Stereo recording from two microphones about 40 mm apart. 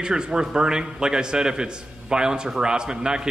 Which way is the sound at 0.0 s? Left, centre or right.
Centre.